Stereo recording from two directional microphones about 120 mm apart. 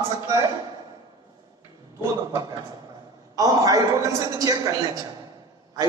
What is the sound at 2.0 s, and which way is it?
A man's voice, 25° right (ahead or behind).